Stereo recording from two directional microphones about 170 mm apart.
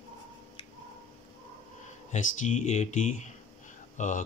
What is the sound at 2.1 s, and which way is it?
Speech, 45° left (ahead or behind).